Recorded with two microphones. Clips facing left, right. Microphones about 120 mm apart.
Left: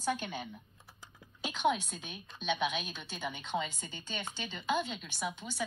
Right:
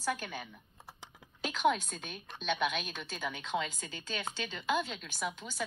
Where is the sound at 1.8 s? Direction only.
50° right (ahead or behind).